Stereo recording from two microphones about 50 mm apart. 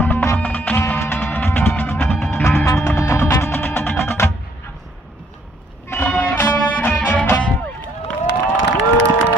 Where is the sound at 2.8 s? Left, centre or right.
Left.